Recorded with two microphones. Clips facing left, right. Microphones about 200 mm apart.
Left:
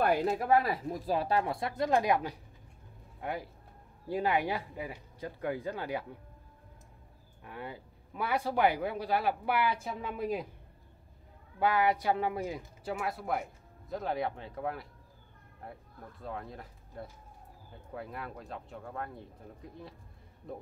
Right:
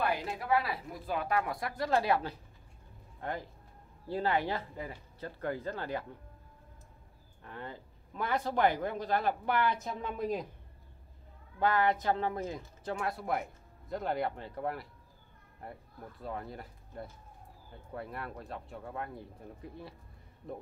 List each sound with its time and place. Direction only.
0.0 s speech: 45° left (ahead or behind)
0.8 s speech: 35° left (ahead or behind); by 6.0 s 10° left (ahead or behind)
7.4 s speech: 10° left (ahead or behind)
11.6 s speech: 10° left (ahead or behind)